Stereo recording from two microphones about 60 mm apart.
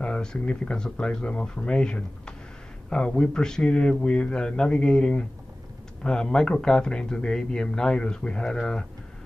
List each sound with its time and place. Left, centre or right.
0.0 s speech: centre